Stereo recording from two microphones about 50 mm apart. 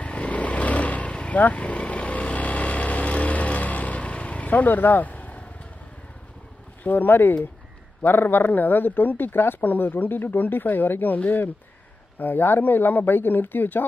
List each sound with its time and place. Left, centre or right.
0.0 s vehicle: left
6.8 s speech: left